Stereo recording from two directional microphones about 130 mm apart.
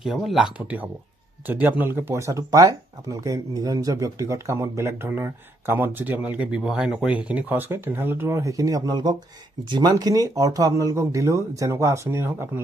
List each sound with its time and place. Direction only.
0.0 s speech: centre (ahead or behind); by 12.6 s 20° right (ahead or behind)